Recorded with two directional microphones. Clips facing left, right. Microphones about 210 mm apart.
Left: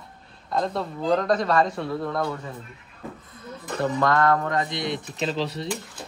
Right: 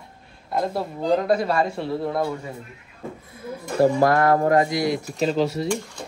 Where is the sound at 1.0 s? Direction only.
25° right (ahead or behind).